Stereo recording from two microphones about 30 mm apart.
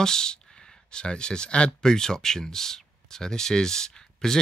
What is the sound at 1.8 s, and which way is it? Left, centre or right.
Speech, centre.